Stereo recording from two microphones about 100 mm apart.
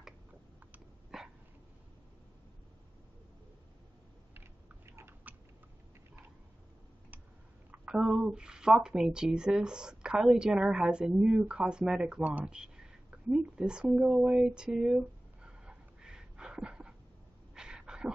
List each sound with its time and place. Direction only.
1.1 s dog: 5° right (ahead or behind)
4.8 s chewing: 25° right (ahead or behind)
7.7 s speech: 10° right (ahead or behind)
14.2 s a sound: 10° right (ahead or behind)